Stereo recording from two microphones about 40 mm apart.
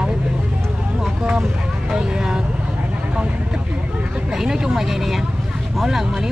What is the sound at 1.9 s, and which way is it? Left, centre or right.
Vehicle, centre.